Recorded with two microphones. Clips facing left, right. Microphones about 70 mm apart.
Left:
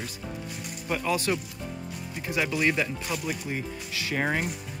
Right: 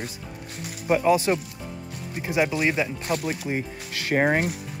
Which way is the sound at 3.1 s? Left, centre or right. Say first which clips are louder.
Right 5 dB; right.